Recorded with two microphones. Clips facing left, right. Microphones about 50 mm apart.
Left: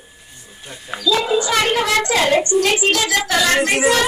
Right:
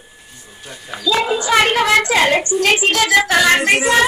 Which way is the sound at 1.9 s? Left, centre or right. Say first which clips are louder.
Right 3 dB; right.